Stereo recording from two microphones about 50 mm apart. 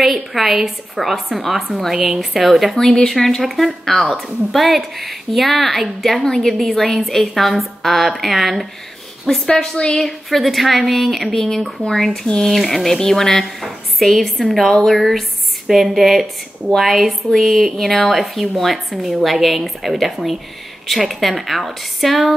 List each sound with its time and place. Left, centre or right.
0.0 s a woman's voice: centre
9.5 s a woman's voice: centre
10.0 s a woman's voice: centre